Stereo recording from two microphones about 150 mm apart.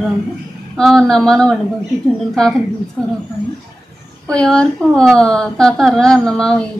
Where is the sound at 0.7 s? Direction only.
5° left (ahead or behind).